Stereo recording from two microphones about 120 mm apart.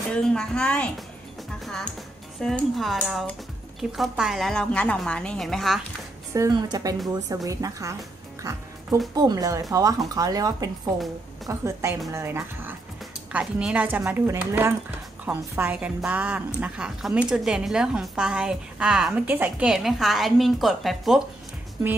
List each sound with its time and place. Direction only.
0.1 s a woman's voice: 5° left (ahead or behind)
1.6 s music: centre (ahead or behind)
2.4 s a woman's voice: centre (ahead or behind)
6.5 s a woman's voice: 30° right (ahead or behind)
8.4 s music: 30° right (ahead or behind)
9.1 s a woman's voice: 35° right (ahead or behind)
13.3 s a woman's voice: 10° right (ahead or behind)
19.2 s a woman's voice: 15° right (ahead or behind)
19.7 s a woman's voice: centre (ahead or behind)